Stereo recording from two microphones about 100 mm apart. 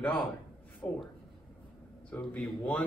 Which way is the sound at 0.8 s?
15° left (ahead or behind).